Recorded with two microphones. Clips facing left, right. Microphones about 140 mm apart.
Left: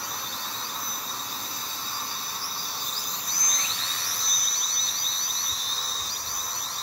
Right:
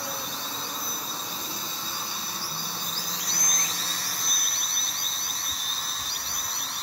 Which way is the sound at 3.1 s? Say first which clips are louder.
Right 1 dB; 75° right (ahead or behind).